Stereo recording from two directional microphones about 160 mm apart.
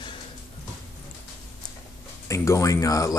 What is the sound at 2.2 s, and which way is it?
Speech, 20° left (ahead or behind).